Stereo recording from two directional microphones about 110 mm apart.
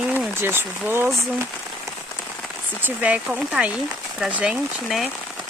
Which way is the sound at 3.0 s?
5° right (ahead or behind).